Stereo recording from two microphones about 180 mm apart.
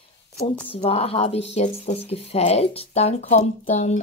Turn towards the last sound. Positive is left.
turn(degrees=40)  # may be behind; listen again after turning